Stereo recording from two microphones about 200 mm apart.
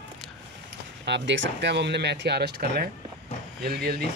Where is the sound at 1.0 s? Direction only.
60° right (ahead or behind).